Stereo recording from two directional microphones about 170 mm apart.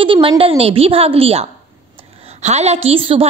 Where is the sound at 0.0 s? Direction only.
30° right (ahead or behind).